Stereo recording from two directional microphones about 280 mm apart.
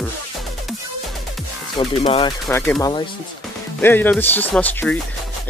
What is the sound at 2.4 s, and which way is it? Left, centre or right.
Speech, centre.